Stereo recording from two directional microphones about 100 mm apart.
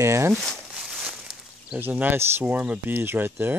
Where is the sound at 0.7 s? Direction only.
5° right (ahead or behind).